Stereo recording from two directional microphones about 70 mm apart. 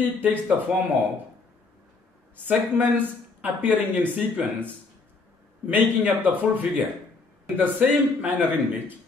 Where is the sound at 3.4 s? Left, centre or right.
Right.